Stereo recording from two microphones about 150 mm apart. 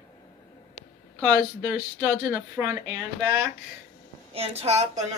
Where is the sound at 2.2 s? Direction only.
15° right (ahead or behind).